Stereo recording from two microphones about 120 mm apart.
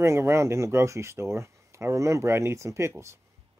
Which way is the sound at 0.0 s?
25° right (ahead or behind).